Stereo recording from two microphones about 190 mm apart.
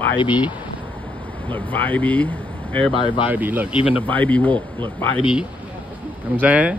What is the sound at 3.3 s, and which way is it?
Speech, 10° right (ahead or behind).